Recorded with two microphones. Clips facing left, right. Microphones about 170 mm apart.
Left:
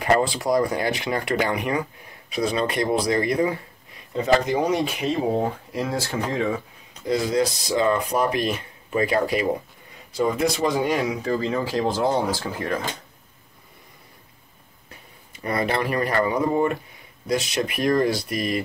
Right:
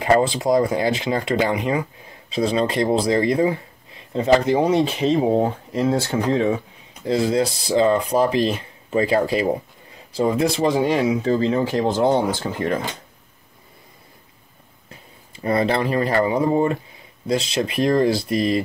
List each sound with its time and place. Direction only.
0.0 s speech: 25° right (ahead or behind)
14.9 s speech: 25° right (ahead or behind)